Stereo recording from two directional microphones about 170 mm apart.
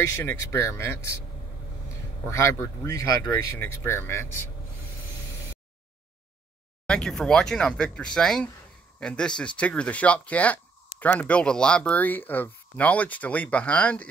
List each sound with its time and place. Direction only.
0.1 s speech: 15° left (ahead or behind)
2.2 s speech: 15° left (ahead or behind)
6.9 s speech: 5° left (ahead or behind)